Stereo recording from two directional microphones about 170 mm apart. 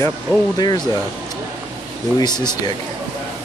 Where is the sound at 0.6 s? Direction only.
25° left (ahead or behind).